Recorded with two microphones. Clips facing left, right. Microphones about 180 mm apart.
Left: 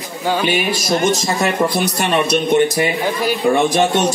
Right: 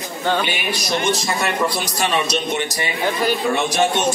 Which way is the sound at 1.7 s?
55° left (ahead or behind).